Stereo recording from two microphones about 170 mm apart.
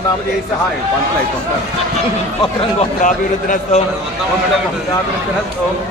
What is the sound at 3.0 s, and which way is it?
Speech, 50° left (ahead or behind).